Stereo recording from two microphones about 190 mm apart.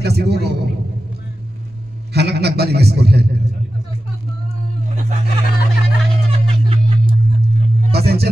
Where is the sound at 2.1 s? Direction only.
60° right (ahead or behind).